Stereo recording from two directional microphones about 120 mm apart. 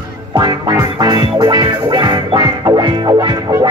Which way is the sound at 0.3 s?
30° right (ahead or behind).